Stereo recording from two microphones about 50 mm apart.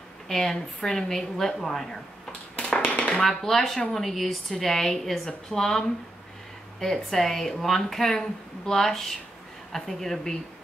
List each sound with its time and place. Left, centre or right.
0.3 s speech: centre
2.5 s tap: left
3.3 s a woman's voice: centre